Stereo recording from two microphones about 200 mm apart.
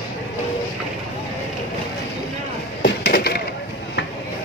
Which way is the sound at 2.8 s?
50° left (ahead or behind).